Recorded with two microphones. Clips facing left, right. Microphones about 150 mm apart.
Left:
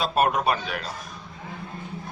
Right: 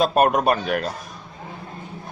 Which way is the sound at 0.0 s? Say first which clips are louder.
Right 5 dB; 50° right (ahead or behind).